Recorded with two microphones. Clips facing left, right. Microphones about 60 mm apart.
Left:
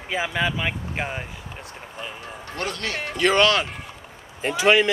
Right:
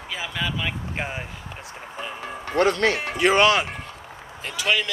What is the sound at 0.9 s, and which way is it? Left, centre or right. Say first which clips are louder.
Speech: left 1 dB; centre.